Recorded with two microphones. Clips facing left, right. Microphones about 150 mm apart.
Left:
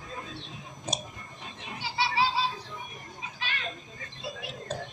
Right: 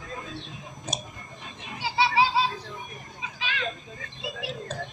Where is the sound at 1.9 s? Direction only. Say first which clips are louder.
Right 5 dB; 90° right.